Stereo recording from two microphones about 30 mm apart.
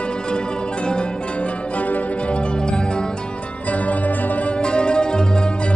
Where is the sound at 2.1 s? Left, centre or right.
Left.